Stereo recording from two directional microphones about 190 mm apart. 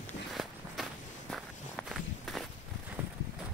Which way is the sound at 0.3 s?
Centre (ahead or behind).